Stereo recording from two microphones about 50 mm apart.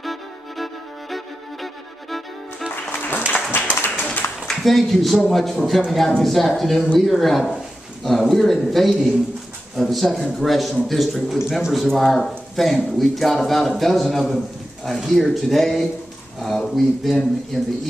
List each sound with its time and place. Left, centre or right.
0.0 s music: centre
1.1 s violin: centre
2.7 s music: left
4.0 s a sound: left
4.5 s a man's voice: centre